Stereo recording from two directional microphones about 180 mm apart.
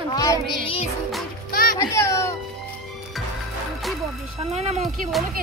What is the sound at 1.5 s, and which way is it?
Music, 50° left (ahead or behind).